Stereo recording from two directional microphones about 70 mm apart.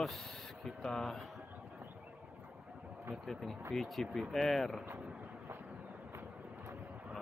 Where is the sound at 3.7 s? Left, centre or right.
Centre.